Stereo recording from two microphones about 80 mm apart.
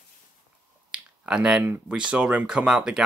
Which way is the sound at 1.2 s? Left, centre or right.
Centre.